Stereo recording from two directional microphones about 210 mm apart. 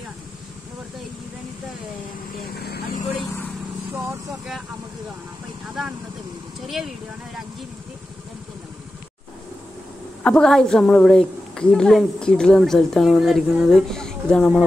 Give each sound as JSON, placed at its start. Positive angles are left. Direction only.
{"t": 2.4, "sound": "vehicle", "side_deg": 50}
{"t": 3.9, "sound": "vehicle", "side_deg": -15}
{"t": 6.6, "sound": "a woman's voice", "side_deg": 0}
{"t": 10.2, "sound": "a woman's voice", "side_deg": 5}